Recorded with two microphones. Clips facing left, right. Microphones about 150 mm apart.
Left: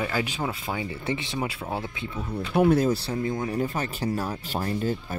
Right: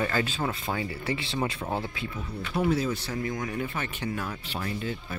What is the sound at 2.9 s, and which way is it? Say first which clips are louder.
Speech: left 5 dB; 30° left (ahead or behind).